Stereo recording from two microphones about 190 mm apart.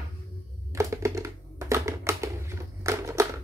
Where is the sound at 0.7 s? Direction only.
15° right (ahead or behind).